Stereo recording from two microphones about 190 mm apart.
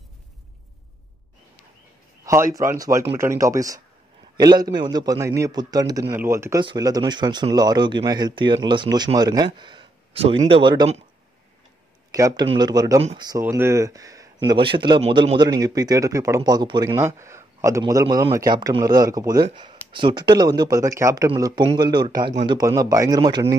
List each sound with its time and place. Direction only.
2.2 s speech: 15° right (ahead or behind)
12.1 s a man's voice: 20° right (ahead or behind)
13.0 s speech: 30° right (ahead or behind)
13.3 s speech: 15° right (ahead or behind)